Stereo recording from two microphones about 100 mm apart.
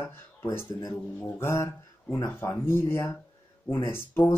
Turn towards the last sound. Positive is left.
turn(degrees=20)  # may be behind; listen again after turning